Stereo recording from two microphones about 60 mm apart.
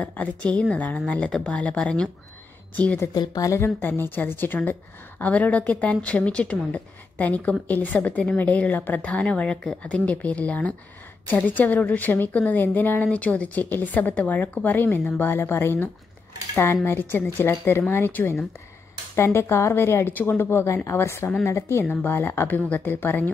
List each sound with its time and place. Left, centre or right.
0.0 s a woman's voice: left
3.8 s a woman's voice: left
21.8 s speech: left